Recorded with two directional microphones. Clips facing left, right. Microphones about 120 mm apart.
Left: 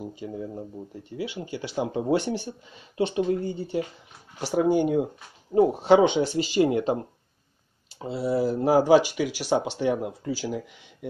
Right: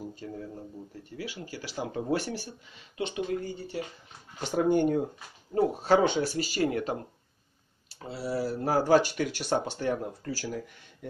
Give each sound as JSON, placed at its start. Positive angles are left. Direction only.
{"t": 0.0, "sound": "speech", "side_deg": 15}
{"t": 4.4, "sound": "speech", "side_deg": 10}
{"t": 8.0, "sound": "speech", "side_deg": 25}